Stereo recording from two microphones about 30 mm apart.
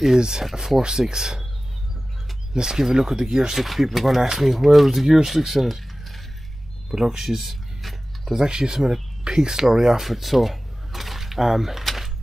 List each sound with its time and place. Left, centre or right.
0.1 s speech: right
2.5 s speech: right
3.3 s speech: centre
8.3 s speech: right
9.8 s speech: centre